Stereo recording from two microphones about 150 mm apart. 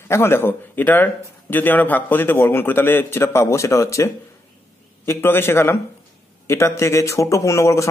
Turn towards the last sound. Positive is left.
turn(degrees=20)  # may be behind; listen again after turning